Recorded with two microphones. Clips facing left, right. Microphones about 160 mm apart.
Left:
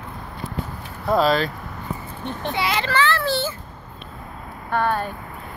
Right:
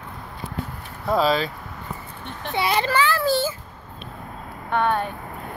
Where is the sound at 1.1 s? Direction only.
Centre (ahead or behind).